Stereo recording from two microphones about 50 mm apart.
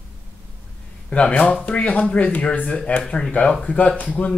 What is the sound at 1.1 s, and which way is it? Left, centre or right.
Speech, left.